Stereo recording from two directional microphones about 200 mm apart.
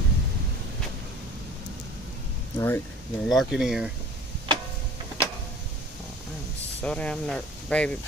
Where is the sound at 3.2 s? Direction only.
Centre (ahead or behind).